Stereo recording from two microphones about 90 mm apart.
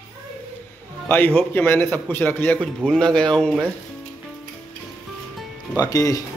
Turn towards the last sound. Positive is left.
turn(degrees=40)  # may be behind; listen again after turning